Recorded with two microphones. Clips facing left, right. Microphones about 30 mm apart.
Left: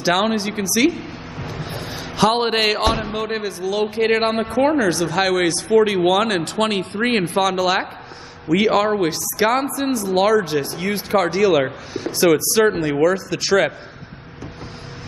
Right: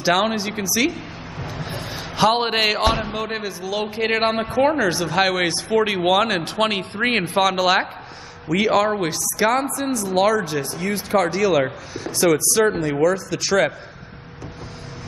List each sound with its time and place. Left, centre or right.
0.0 s speech: centre
8.5 s a man's voice: centre